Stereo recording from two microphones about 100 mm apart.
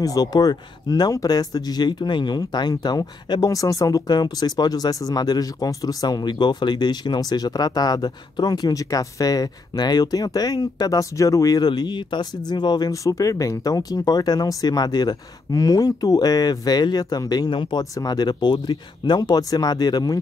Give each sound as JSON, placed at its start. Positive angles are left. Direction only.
{"t": 0.0, "sound": "speech", "side_deg": 40}
{"t": 17.9, "sound": "speech", "side_deg": 40}